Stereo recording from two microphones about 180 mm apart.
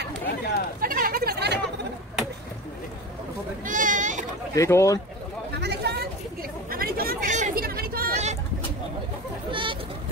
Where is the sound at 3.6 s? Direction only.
45° right (ahead or behind).